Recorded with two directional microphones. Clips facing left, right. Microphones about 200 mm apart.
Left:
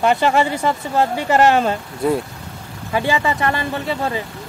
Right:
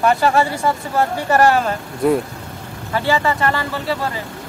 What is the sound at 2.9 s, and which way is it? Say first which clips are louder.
Speech: right 1 dB; 15° left (ahead or behind).